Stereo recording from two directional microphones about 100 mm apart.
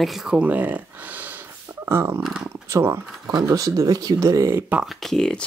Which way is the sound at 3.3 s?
40° right (ahead or behind).